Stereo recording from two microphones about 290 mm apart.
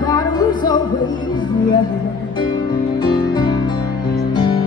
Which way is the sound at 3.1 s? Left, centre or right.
Centre.